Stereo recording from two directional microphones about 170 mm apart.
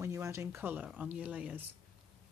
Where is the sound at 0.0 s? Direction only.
15° right (ahead or behind).